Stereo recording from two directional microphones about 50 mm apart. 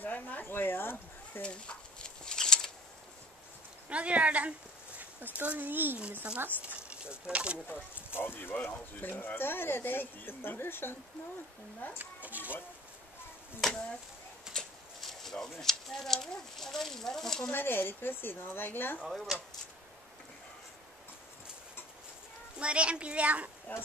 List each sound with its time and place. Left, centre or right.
0.0 s a sound: left
1.4 s a sound: left
3.9 s speech: right
6.6 s speech: right
7.6 s speech: left
8.5 s speech: left
12.0 s speech: right
13.6 s speech: centre
14.5 s a sound: centre
15.5 s speech: centre
17.5 s speech: left
19.0 s speech: centre
22.6 s a woman's voice: right